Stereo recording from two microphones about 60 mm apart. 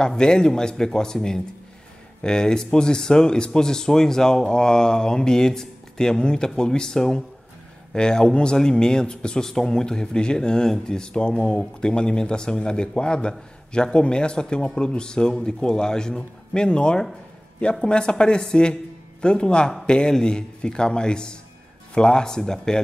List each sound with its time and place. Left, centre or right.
0.0 s speech: centre